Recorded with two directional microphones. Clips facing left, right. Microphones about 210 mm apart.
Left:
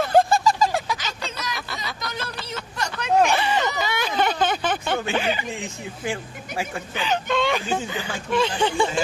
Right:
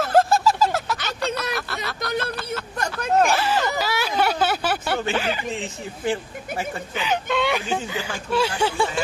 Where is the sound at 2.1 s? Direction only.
60° right (ahead or behind).